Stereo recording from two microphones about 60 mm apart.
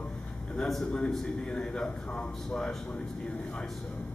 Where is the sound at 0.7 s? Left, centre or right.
Centre.